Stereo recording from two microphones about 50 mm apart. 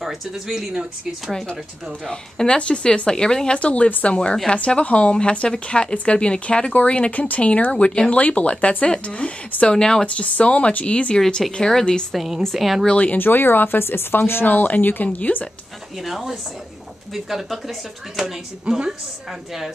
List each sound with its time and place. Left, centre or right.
0.0 s speech: centre
2.0 s speech: centre
3.5 s speech: left
10.0 s speech: left
11.1 s speech: centre
12.1 s speech: centre
12.8 s speech: left
13.2 s speech: left
15.0 s speech: left
16.1 s speech: centre
18.2 s speech: centre